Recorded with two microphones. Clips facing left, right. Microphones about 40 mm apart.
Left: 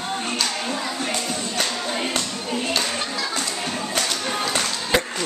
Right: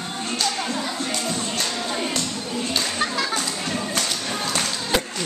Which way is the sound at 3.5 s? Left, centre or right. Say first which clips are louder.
Even; centre.